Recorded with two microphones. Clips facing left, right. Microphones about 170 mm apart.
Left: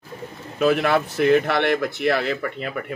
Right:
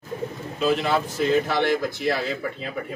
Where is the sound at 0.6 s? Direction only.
60° left (ahead or behind).